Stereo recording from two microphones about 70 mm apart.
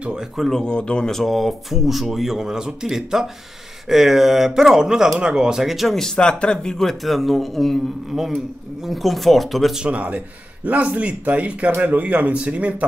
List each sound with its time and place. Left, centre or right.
0.4 s speech: centre
9.8 s speech: centre